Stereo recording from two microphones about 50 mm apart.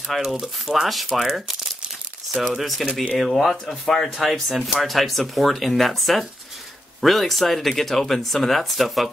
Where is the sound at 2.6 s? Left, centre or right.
Centre.